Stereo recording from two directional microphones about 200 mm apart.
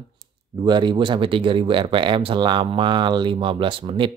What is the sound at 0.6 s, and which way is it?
Speech, 20° right (ahead or behind).